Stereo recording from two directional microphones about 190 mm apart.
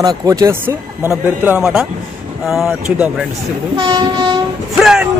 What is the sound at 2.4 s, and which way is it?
Music, centre (ahead or behind).